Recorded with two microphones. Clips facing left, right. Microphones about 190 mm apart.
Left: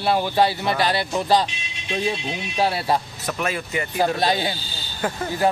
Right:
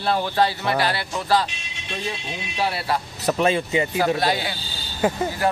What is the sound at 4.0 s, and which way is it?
Speech, 20° left (ahead or behind).